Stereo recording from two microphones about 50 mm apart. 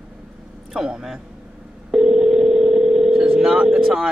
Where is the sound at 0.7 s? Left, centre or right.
Centre.